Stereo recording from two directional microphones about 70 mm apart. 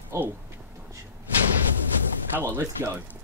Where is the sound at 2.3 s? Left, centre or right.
Right.